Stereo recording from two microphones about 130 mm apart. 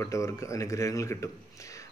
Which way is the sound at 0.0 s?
25° left (ahead or behind).